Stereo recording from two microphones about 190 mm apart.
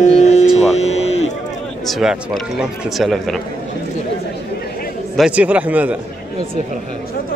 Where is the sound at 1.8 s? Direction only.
Centre (ahead or behind).